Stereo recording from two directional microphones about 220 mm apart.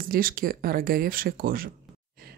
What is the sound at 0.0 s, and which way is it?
Speech, 40° right (ahead or behind).